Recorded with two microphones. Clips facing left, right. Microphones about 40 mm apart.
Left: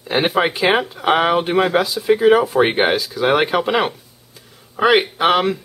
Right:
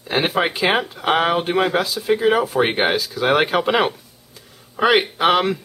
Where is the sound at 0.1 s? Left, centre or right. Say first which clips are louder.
Left 2 dB; centre.